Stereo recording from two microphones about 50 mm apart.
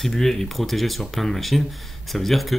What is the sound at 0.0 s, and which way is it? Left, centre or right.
Speech, centre.